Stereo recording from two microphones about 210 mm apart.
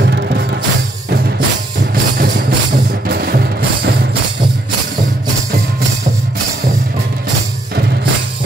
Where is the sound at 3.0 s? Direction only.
50° right (ahead or behind).